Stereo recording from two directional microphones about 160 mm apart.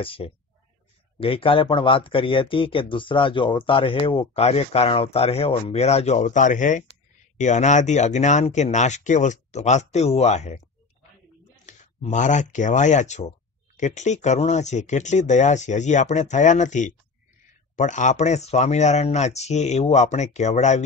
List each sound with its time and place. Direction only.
0.0 s speech: 35° left (ahead or behind)
11.6 s a sound: 50° left (ahead or behind)
12.5 s speech: 50° left (ahead or behind)